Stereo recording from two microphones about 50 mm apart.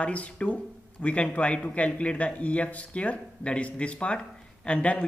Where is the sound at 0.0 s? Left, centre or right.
Left.